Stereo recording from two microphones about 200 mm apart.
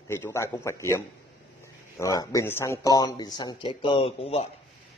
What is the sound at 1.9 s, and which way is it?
Speech, 15° left (ahead or behind).